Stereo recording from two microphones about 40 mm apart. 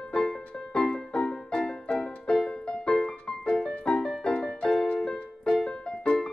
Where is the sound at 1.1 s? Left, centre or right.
Left.